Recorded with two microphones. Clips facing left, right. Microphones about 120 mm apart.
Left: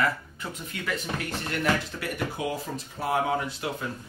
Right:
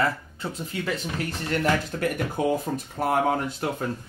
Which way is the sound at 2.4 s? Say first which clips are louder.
Right 6 dB; 45° right (ahead or behind).